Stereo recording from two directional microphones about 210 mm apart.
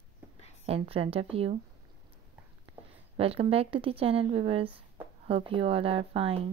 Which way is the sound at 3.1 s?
30° right (ahead or behind).